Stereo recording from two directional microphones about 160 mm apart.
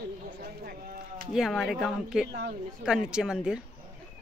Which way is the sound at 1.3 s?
Centre (ahead or behind).